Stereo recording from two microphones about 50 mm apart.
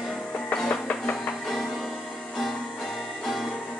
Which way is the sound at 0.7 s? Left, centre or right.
Left.